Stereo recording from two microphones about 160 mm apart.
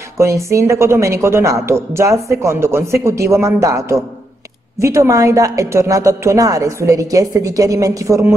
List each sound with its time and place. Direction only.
0.2 s a woman's voice: 20° right (ahead or behind)